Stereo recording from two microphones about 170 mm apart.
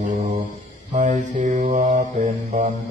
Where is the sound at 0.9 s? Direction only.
50° right (ahead or behind).